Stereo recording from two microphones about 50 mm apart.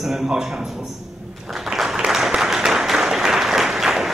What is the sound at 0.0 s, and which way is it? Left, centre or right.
Speech, centre.